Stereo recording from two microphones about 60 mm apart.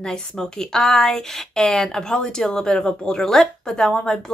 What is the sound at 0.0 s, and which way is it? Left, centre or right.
A woman's voice, centre.